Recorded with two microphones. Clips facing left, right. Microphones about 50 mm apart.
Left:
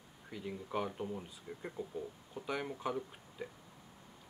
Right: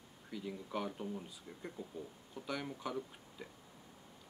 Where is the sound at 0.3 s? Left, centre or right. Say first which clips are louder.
Left 2 dB; centre.